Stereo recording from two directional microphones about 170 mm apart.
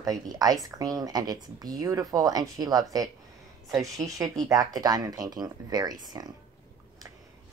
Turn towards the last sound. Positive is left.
turn(degrees=-25)  # may be behind; listen again after turning